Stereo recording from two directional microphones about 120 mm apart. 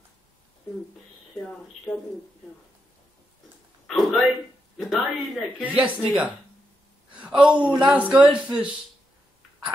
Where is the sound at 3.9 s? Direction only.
Centre (ahead or behind).